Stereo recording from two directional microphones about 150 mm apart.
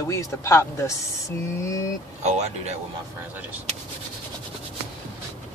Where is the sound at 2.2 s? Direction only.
50° right (ahead or behind).